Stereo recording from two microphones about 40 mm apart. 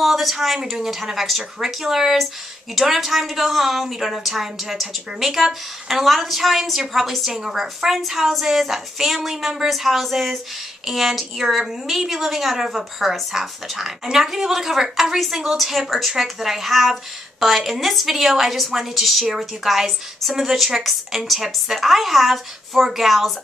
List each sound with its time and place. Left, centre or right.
0.0 s a woman's voice: centre